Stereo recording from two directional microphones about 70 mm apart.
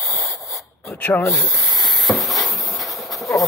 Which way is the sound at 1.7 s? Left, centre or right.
Centre.